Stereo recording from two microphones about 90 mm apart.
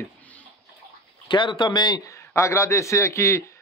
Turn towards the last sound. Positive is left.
turn(degrees=35)  # may be behind; listen again after turning